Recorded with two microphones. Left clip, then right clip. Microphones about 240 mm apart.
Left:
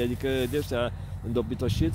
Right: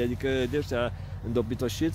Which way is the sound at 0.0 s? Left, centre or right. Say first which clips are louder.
Even; centre.